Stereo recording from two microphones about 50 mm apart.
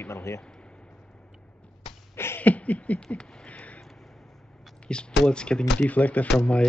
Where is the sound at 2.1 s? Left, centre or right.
Left.